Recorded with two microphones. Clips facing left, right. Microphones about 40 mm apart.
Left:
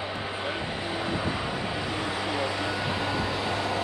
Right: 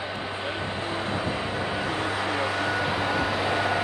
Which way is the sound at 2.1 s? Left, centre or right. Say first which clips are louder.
Right 2 dB; right.